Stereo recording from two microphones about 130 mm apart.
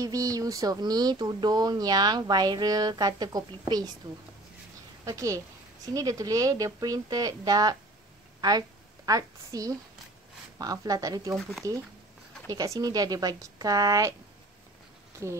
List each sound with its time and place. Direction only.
0.0 s speech: 25° right (ahead or behind)
5.0 s a woman's voice: 25° right (ahead or behind)
15.2 s speech: 20° right (ahead or behind)